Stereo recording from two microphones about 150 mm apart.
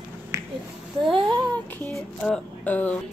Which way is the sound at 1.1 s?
30° right (ahead or behind).